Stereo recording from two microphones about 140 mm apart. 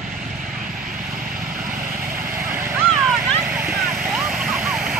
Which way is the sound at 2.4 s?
15° right (ahead or behind).